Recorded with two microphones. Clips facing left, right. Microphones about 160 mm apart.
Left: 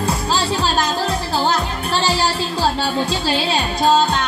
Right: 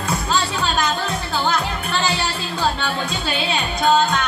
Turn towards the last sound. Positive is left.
turn(degrees=30)  # may be behind; listen again after turning